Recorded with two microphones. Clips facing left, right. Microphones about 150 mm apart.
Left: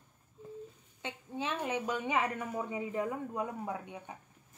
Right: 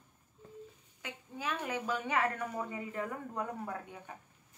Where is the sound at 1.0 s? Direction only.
25° left (ahead or behind).